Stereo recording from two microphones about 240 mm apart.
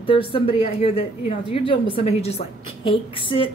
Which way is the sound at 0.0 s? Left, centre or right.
Left.